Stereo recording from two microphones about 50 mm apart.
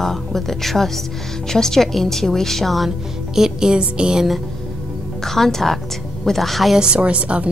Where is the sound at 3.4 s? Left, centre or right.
Centre.